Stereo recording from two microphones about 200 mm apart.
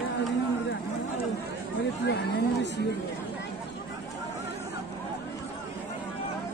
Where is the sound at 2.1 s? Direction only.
55° left (ahead or behind).